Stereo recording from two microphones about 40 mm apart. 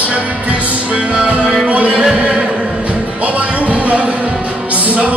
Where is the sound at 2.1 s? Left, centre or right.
Right.